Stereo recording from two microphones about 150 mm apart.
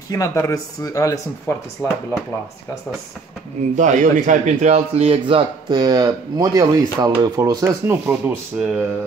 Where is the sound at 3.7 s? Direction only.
55° right (ahead or behind); by 8.8 s 10° right (ahead or behind).